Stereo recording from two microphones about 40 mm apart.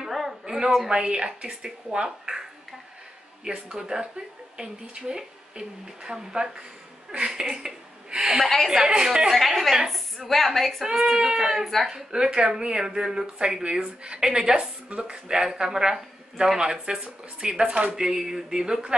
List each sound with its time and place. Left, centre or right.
0.1 s a sound: centre
0.8 s speech: centre
3.4 s a woman's voice: right
9.3 s a woman's voice: centre
10.8 s speech: centre
11.9 s speech: right
17.9 s speech: centre